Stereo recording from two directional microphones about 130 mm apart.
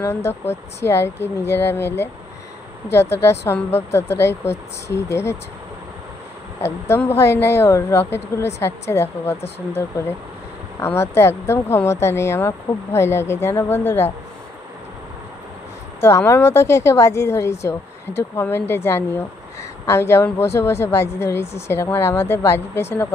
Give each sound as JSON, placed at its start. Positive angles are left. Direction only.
{"t": 0.0, "sound": "a woman's voice", "side_deg": 20}
{"t": 6.6, "sound": "a woman's voice", "side_deg": 20}
{"t": 16.0, "sound": "a woman's voice", "side_deg": 20}